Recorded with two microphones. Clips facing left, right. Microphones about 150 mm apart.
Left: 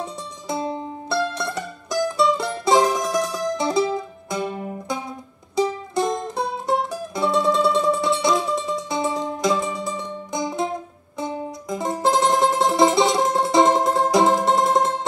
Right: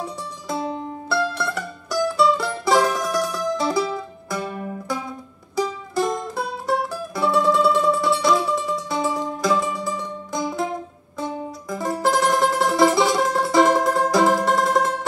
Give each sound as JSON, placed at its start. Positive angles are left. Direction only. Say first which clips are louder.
{"t": 0.0, "sound": "music", "louder": "even", "side_deg": 20}